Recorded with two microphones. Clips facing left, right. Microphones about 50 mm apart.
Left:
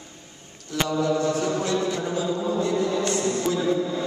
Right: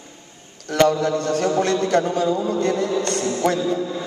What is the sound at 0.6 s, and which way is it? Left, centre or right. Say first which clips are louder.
A man's voice: right 6 dB; right.